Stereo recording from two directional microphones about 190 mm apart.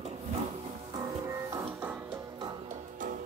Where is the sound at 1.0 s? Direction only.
15° right (ahead or behind).